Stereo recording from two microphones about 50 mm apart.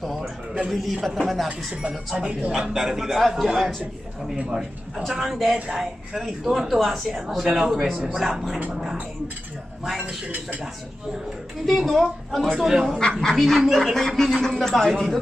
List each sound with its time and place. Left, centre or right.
0.0 s a sound: centre
0.7 s a man's voice: centre
1.8 s a man's voice: centre
10.0 s speech: right
11.6 s a man's voice: centre